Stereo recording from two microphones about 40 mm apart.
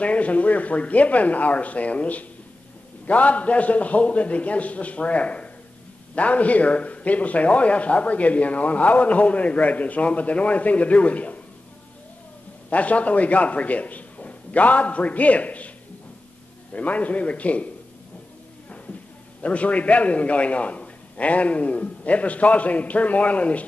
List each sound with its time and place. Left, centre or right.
0.0 s a man's voice: left
12.6 s a man's voice: left
16.7 s a man's voice: left
19.4 s a man's voice: left